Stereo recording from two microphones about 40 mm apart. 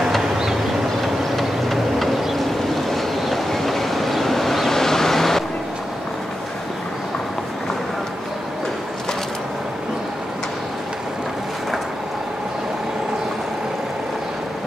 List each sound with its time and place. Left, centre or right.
1.0 s vehicle: centre